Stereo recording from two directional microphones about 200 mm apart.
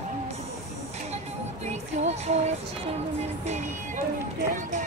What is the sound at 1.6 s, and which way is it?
Music, 35° right (ahead or behind).